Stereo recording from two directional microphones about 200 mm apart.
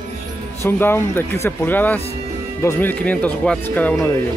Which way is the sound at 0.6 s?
10° left (ahead or behind).